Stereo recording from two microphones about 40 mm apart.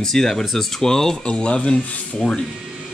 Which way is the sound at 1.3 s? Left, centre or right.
Left.